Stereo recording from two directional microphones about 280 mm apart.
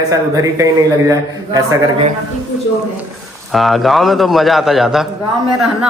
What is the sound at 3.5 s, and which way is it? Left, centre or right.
Speech, centre.